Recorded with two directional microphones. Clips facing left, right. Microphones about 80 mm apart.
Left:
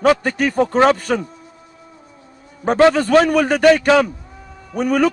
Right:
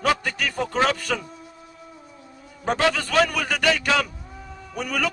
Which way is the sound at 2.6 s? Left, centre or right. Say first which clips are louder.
Left 9 dB; left.